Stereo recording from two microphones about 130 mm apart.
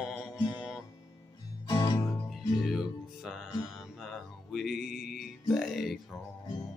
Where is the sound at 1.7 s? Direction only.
30° left (ahead or behind).